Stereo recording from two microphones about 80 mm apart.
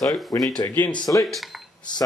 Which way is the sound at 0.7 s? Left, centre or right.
Left.